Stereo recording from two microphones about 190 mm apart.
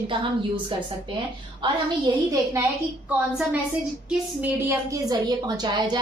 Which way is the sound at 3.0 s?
10° right (ahead or behind).